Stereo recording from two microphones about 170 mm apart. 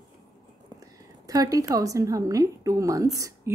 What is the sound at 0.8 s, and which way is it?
A woman's voice, 20° right (ahead or behind).